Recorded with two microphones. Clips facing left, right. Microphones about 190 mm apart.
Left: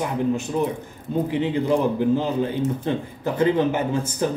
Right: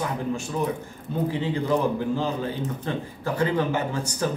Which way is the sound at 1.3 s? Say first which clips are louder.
Left 4 dB; 15° left (ahead or behind).